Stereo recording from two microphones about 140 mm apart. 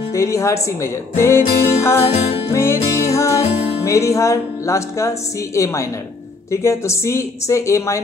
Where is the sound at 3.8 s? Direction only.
20° left (ahead or behind).